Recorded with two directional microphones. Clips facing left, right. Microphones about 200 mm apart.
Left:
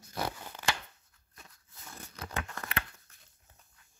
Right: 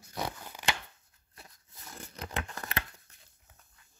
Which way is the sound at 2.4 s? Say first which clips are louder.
Even; 30° right (ahead or behind).